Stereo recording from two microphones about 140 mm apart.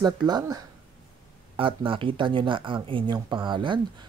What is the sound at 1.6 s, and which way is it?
Speech, 40° right (ahead or behind).